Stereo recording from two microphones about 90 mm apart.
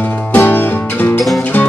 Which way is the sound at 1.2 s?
Centre (ahead or behind).